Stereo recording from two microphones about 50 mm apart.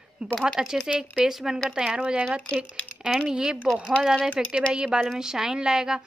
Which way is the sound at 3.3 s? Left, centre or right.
Centre.